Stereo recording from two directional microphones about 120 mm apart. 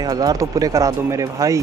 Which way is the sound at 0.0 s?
30° right (ahead or behind).